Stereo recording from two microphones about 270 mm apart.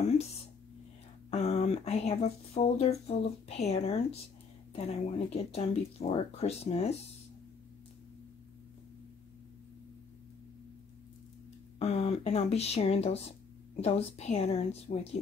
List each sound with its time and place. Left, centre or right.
1.3 s speech: left
11.8 s speech: left